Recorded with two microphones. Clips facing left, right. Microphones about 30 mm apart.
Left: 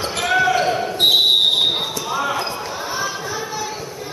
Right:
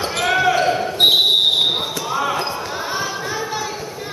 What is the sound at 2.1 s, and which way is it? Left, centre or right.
Basketball bounce, centre.